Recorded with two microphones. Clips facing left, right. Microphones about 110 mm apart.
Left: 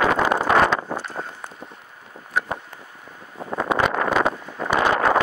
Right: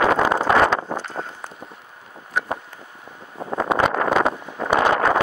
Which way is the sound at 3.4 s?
25° right (ahead or behind).